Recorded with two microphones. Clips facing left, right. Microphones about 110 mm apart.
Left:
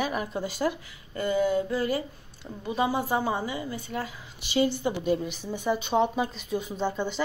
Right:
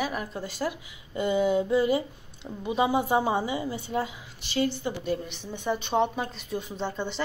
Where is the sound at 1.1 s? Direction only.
20° right (ahead or behind).